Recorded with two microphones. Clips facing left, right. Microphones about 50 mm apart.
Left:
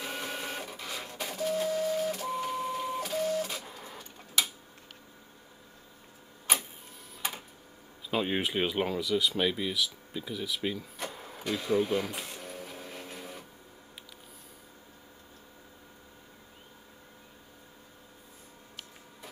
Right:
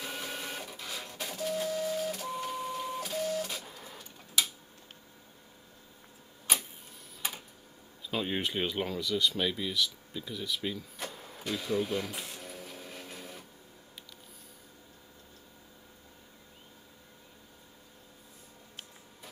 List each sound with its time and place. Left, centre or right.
0.0 s printer: centre
6.5 s tick-tock: centre
7.2 s a sound: centre
8.1 s speech: centre